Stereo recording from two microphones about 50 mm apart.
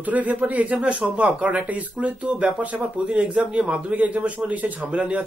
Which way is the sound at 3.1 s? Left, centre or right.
Centre.